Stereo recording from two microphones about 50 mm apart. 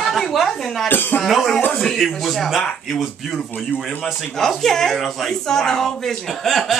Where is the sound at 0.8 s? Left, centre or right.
Left.